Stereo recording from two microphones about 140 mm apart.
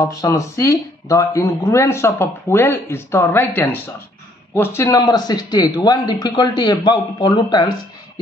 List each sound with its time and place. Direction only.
0.0 s speech: 25° left (ahead or behind)